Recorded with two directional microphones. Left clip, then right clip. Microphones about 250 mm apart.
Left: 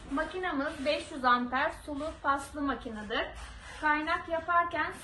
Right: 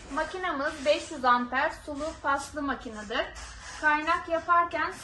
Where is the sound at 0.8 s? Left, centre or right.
Right.